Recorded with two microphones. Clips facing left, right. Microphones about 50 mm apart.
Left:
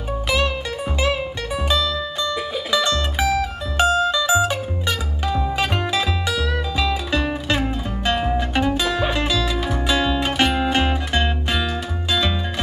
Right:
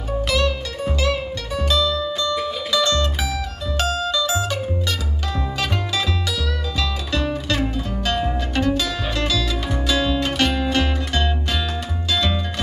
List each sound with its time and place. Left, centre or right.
0.3 s music: centre